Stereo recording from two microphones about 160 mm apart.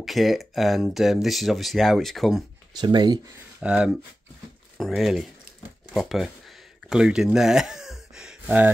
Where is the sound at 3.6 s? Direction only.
5° right (ahead or behind).